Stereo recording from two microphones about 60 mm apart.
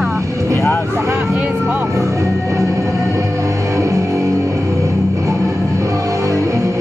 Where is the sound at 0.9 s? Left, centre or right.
Right.